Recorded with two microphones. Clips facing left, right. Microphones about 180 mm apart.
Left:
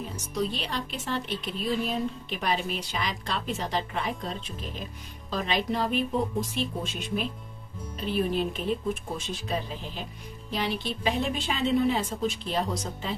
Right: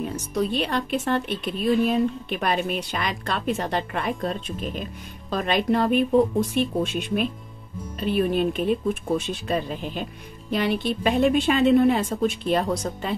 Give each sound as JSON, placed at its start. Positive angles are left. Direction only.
{"t": 0.1, "sound": "speech", "side_deg": -55}